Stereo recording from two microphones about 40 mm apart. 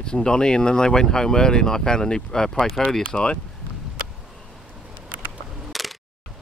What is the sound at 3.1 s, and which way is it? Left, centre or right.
Speech, left.